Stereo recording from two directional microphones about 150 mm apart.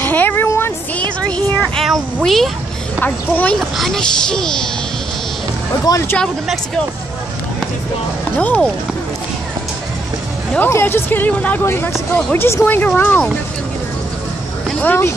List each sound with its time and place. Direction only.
0.0 s a sound: 10° left (ahead or behind)
2.1 s speech: centre (ahead or behind)
3.0 s speech: 10° left (ahead or behind)
3.5 s speech: centre (ahead or behind)
5.9 s speech: 20° left (ahead or behind)
6.1 s speech: 5° left (ahead or behind)
8.4 s speech: 10° left (ahead or behind)
10.5 s speech: 15° left (ahead or behind)
14.8 s speech: 15° left (ahead or behind)